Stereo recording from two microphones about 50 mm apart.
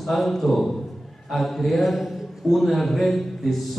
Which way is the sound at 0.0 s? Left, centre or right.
Centre.